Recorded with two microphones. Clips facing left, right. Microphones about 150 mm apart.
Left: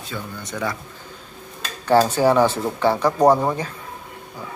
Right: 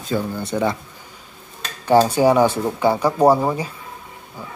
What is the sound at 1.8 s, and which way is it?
Speech, 15° right (ahead or behind).